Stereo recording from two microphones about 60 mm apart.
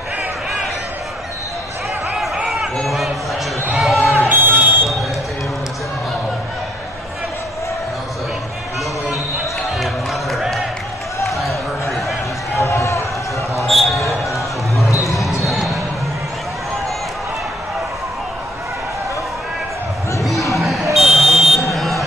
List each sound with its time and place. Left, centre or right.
2.4 s a sound: centre
4.3 s buzzer: right
9.1 s basketball bounce: centre
10.3 s music: centre
11.2 s run: centre
12.6 s a sound: left
13.7 s basketball bounce: centre
14.9 s basketball bounce: left
15.1 s basketball bounce: centre
20.2 s a sound: centre
20.5 s buzzer: centre
21.7 s vehicle: centre